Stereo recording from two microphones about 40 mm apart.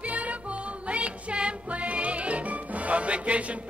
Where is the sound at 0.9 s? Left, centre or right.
Right.